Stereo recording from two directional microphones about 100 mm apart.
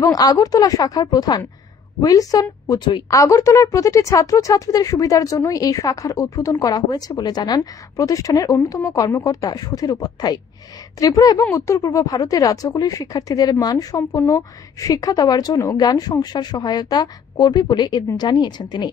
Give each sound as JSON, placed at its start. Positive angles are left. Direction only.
{"t": 0.0, "sound": "a woman's voice", "side_deg": 35}